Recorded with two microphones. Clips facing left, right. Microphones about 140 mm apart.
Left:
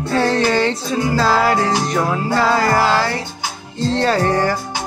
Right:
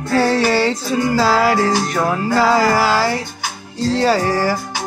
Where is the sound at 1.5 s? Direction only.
20° left (ahead or behind).